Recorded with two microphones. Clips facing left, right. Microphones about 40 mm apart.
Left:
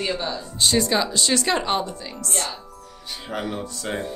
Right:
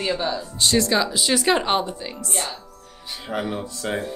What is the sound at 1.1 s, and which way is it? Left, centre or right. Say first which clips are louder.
Speech: right 2 dB; centre.